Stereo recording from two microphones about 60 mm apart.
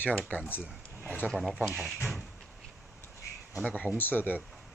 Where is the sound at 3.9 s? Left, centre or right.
Left.